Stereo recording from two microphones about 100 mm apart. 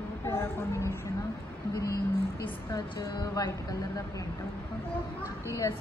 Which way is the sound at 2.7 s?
45° left (ahead or behind).